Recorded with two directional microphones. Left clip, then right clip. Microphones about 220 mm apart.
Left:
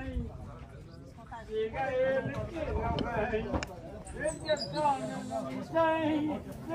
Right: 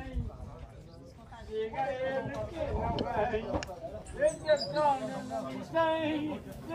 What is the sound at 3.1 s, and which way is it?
Speech, 45° right (ahead or behind).